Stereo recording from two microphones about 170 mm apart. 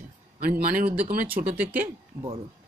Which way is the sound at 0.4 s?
55° right (ahead or behind).